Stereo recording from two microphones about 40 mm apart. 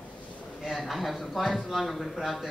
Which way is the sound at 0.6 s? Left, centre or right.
Centre.